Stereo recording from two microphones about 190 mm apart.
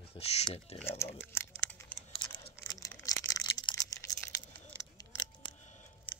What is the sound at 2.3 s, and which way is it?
Computer keyboard, 20° left (ahead or behind).